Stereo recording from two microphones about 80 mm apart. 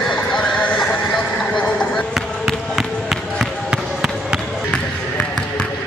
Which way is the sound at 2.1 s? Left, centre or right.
Centre.